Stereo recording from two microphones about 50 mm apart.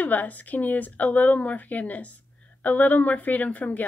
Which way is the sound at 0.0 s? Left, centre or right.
Left.